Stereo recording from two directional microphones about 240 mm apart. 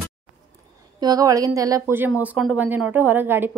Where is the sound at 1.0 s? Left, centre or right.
Centre.